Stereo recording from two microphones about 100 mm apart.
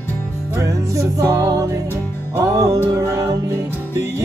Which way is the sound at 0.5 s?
30° right (ahead or behind).